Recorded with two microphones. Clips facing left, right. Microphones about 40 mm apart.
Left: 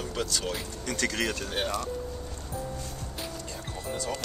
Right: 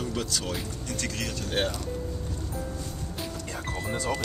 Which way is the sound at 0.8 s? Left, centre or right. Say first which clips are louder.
Left 6 dB; left.